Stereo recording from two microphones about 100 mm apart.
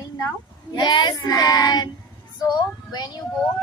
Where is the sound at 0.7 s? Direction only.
50° left (ahead or behind).